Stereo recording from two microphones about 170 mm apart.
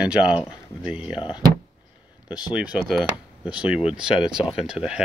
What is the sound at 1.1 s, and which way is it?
Speech, 30° left (ahead or behind).